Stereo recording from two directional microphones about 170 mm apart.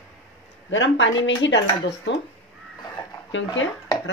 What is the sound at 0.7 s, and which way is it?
Speech, 90° left.